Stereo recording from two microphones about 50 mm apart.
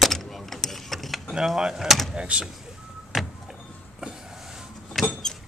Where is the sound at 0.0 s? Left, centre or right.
Centre.